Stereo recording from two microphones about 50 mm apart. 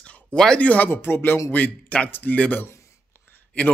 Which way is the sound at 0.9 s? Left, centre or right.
Left.